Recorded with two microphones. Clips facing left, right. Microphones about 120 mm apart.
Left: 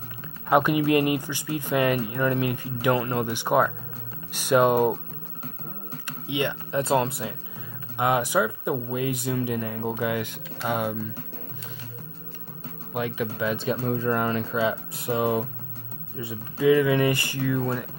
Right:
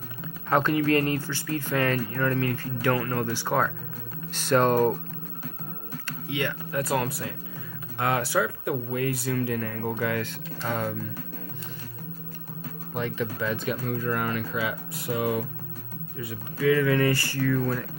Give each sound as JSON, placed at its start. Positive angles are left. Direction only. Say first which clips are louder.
{"t": 0.5, "sound": "speech", "louder": "left 2 dB", "side_deg": 15}
{"t": 6.0, "sound": "speech", "louder": "left 3 dB", "side_deg": 20}
{"t": 12.9, "sound": "speech", "louder": "left 2 dB", "side_deg": 10}
{"t": 13.7, "sound": "speech", "louder": "left 3 dB", "side_deg": 25}